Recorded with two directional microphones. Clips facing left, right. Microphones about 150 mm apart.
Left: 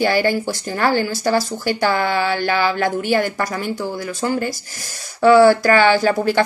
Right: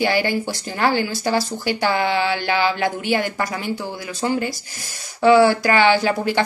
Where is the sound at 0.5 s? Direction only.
20° right (ahead or behind).